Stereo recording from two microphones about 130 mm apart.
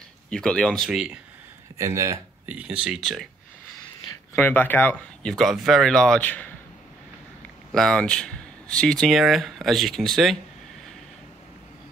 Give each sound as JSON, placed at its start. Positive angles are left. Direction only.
{"t": 0.3, "sound": "speech", "side_deg": 5}
{"t": 0.8, "sound": "speech", "side_deg": -5}
{"t": 1.8, "sound": "speech", "side_deg": -20}
{"t": 2.5, "sound": "speech", "side_deg": -10}
{"t": 4.4, "sound": "speech", "side_deg": 15}
{"t": 7.7, "sound": "speech", "side_deg": 5}